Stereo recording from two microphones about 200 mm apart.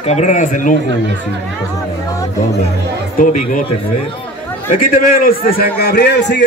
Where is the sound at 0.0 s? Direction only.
35° left (ahead or behind).